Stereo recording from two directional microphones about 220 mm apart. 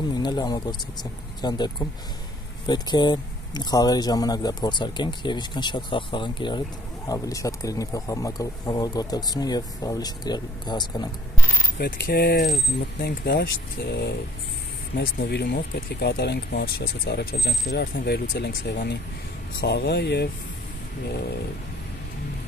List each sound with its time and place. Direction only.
0.1 s speech: 20° left (ahead or behind)
11.8 s speech: 45° left (ahead or behind)